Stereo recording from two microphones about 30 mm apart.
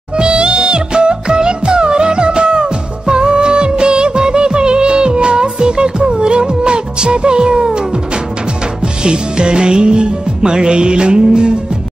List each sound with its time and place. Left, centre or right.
0.4 s music: right